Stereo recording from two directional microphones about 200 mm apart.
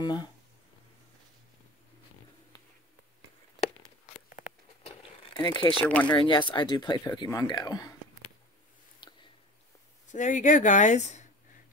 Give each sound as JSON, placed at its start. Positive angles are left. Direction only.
{"t": 0.0, "sound": "speech", "side_deg": 20}
{"t": 4.8, "sound": "a sound", "side_deg": 20}
{"t": 5.9, "sound": "speech", "side_deg": 5}
{"t": 6.2, "sound": "speech", "side_deg": 25}
{"t": 9.0, "sound": "a sound", "side_deg": 20}
{"t": 10.1, "sound": "speech", "side_deg": 40}